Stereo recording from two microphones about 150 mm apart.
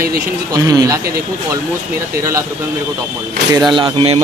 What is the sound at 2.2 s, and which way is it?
Speech, 20° right (ahead or behind).